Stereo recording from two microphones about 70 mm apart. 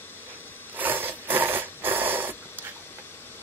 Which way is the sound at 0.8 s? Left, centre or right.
Right.